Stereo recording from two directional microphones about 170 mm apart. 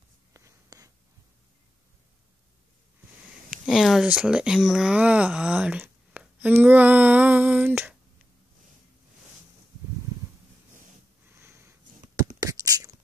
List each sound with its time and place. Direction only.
0.3 s writing: 20° right (ahead or behind)
3.4 s a sound: 5° right (ahead or behind)
11.2 s sniff: 15° right (ahead or behind)
12.4 s beatboxing: 20° right (ahead or behind)